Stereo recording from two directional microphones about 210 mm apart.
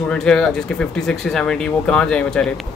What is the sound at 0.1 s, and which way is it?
Speech, 5° left (ahead or behind).